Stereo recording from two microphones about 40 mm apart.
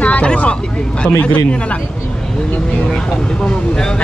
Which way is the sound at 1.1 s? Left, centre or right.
Left.